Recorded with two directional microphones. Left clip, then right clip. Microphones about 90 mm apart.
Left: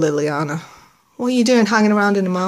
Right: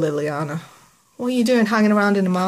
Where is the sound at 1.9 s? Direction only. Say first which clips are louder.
Left 2 dB; 15° left (ahead or behind).